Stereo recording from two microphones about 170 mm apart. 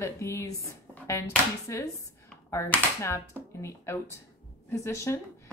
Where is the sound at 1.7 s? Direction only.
20° left (ahead or behind).